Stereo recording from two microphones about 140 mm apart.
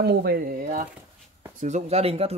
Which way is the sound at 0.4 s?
80° right.